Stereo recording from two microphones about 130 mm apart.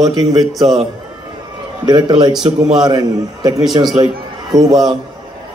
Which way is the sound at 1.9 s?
35° right (ahead or behind).